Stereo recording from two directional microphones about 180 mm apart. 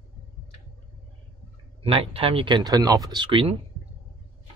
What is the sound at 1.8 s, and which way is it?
Speech, 30° right (ahead or behind).